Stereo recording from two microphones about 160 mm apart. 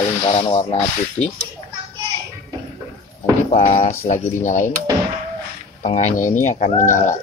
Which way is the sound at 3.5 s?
40° left (ahead or behind).